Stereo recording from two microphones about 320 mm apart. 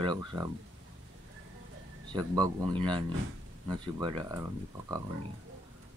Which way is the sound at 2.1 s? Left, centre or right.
Centre.